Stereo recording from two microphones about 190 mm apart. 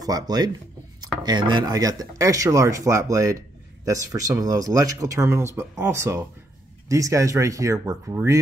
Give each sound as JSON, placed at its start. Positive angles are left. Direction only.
{"t": 0.0, "sound": "speech", "side_deg": -20}